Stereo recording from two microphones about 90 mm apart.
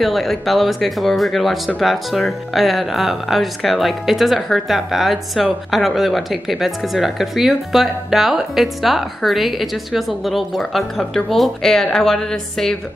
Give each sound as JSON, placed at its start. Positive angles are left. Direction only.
{"t": 0.0, "sound": "speech", "side_deg": 0}